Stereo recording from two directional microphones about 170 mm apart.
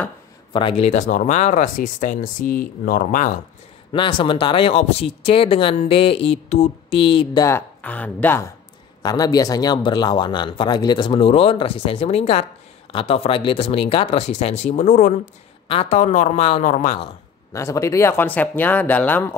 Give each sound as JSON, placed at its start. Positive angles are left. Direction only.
{"t": 0.5, "sound": "speech", "side_deg": 30}
{"t": 3.9, "sound": "speech", "side_deg": 30}
{"t": 7.4, "sound": "speech", "side_deg": 10}
{"t": 15.7, "sound": "speech", "side_deg": 35}
{"t": 17.5, "sound": "speech", "side_deg": 20}